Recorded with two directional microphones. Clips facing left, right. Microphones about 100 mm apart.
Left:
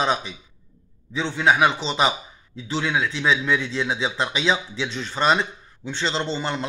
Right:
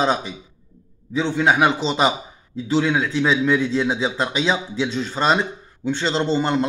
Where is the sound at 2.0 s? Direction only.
30° right (ahead or behind).